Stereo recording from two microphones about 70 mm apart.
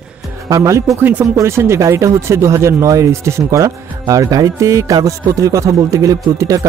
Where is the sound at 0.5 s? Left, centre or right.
Right.